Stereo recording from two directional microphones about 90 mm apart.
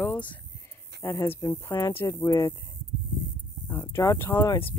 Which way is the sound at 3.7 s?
20° left (ahead or behind).